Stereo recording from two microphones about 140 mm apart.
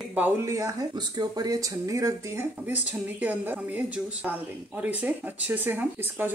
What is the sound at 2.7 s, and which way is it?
Speech, 10° right (ahead or behind).